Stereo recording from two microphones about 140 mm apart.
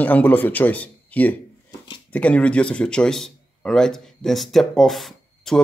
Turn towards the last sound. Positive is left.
turn(degrees=0)  # may be behind; listen again after turning